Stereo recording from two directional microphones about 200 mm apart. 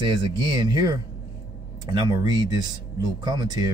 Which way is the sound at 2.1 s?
20° right (ahead or behind).